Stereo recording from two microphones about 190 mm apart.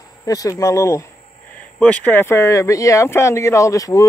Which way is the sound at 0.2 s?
15° left (ahead or behind).